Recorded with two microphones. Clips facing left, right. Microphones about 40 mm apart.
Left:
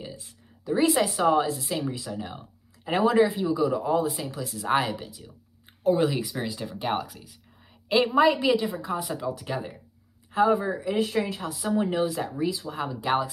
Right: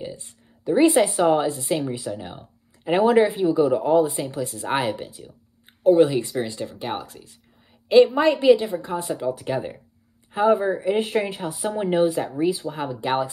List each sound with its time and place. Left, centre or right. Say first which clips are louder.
0.7 s a woman's voice: right 6 dB; right
2.1 s a sound: right 1 dB; centre
2.9 s a woman's voice: right 4 dB; right
6.0 s speech: right 4 dB; centre
8.2 s a woman's voice: right 4 dB; centre
9.1 s a woman's voice: right 5 dB; right